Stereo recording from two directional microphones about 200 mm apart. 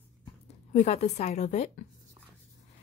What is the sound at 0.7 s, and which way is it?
A woman's voice, 35° left (ahead or behind).